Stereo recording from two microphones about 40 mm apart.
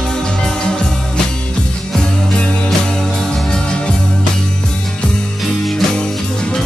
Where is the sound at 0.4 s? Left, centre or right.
Centre.